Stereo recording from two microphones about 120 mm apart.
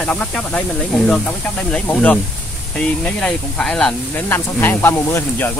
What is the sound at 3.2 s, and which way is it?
Speech, 5° left (ahead or behind).